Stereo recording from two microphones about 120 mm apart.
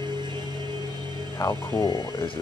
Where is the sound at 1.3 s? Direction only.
25° left (ahead or behind).